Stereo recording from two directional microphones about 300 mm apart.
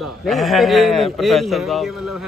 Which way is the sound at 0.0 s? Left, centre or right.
Centre.